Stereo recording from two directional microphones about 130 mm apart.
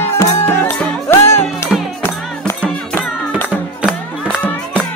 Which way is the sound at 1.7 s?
Centre (ahead or behind).